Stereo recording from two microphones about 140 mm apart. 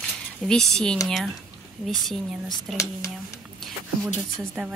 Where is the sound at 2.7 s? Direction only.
20° left (ahead or behind).